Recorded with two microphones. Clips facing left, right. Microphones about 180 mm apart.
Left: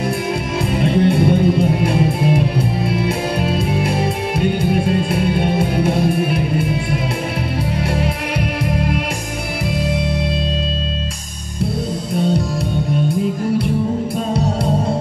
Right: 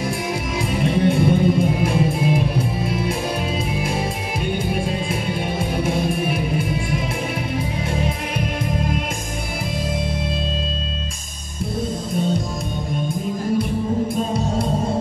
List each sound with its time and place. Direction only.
0.7 s music: 60° left (ahead or behind)